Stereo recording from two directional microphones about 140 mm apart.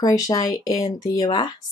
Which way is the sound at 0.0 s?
25° left (ahead or behind).